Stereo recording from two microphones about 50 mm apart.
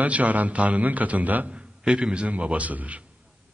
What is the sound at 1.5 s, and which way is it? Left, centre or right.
A man's voice, right.